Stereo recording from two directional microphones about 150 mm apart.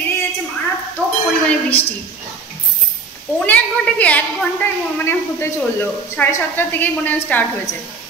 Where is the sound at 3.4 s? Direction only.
10° left (ahead or behind).